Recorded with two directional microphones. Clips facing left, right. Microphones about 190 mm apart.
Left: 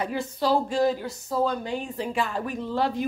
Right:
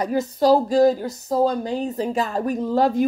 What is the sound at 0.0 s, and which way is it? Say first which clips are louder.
Speech: right 7 dB; 40° right (ahead or behind).